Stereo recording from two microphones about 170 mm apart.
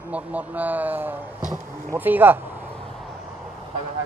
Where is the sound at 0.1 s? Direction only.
10° right (ahead or behind).